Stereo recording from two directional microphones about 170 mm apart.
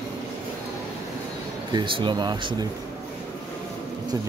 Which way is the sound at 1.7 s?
25° right (ahead or behind).